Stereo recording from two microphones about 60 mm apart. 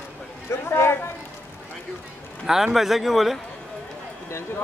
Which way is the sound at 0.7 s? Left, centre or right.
Left.